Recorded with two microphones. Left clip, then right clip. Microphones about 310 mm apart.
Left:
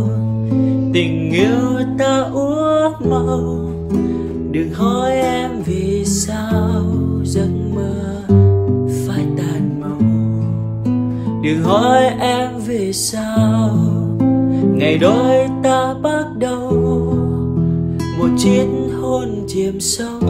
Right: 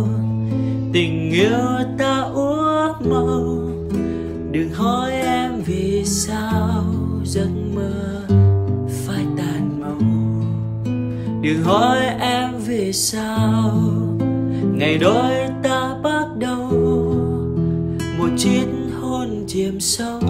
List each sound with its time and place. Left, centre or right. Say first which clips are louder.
0.6 s music: left 4 dB; centre
4.6 s music: left 2 dB; centre
11.4 s music: left 2 dB; centre
18.2 s music: left 5 dB; centre